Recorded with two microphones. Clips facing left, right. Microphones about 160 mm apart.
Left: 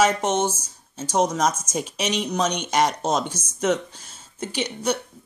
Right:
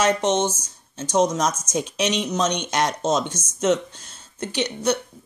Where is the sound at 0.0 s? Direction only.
5° left (ahead or behind).